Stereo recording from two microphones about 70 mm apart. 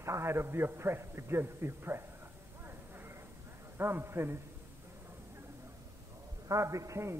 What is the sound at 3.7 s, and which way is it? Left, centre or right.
Speech, right.